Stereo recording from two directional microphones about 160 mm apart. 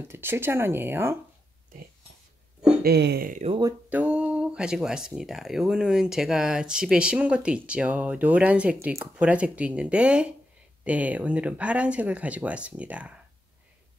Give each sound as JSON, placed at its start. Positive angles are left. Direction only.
{"t": 0.1, "sound": "speech", "side_deg": -15}
{"t": 2.8, "sound": "speech", "side_deg": -90}
{"t": 3.9, "sound": "speech", "side_deg": -10}